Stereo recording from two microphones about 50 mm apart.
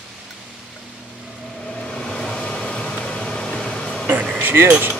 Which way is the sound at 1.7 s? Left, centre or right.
Centre.